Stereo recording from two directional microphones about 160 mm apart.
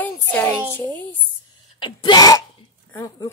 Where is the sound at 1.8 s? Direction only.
30° left (ahead or behind).